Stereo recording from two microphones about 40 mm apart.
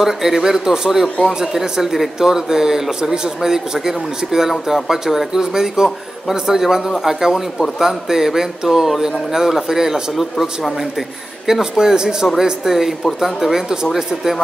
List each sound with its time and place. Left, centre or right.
0.0 s speech: centre
11.7 s speech: centre